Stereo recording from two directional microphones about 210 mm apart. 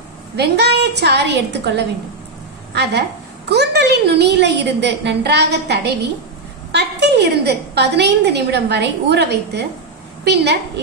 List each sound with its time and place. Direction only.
0.4 s a woman's voice: 50° right (ahead or behind)